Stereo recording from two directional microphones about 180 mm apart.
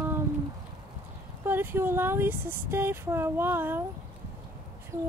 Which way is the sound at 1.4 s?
10° right (ahead or behind).